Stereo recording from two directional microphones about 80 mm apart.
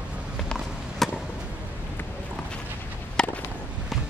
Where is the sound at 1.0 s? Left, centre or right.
Centre.